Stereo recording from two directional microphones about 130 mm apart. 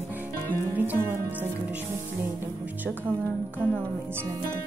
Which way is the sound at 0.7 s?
15° right (ahead or behind).